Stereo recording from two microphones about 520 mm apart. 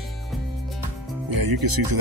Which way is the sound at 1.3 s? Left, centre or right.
Right.